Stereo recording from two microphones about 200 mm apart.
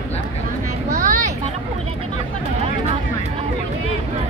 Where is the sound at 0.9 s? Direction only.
45° right (ahead or behind).